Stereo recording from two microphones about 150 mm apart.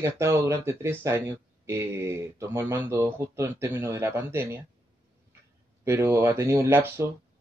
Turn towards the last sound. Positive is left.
turn(degrees=-15)  # may be behind; listen again after turning